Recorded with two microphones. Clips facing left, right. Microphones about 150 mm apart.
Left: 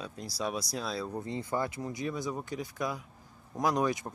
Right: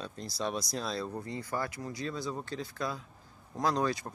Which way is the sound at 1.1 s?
20° left (ahead or behind).